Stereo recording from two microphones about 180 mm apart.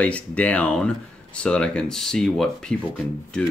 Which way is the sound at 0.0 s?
5° left (ahead or behind).